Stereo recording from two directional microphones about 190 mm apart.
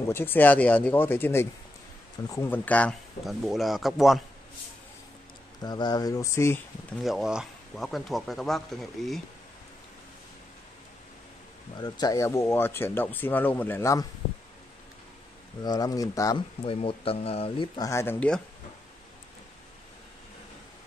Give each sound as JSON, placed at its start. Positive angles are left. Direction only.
{"t": 0.1, "sound": "speech", "side_deg": 10}
{"t": 5.6, "sound": "speech", "side_deg": 20}
{"t": 7.0, "sound": "speech", "side_deg": 0}
{"t": 11.7, "sound": "speech", "side_deg": 20}
{"t": 15.6, "sound": "speech", "side_deg": 20}